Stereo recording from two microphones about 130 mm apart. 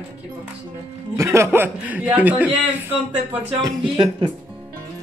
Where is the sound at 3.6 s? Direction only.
35° right (ahead or behind).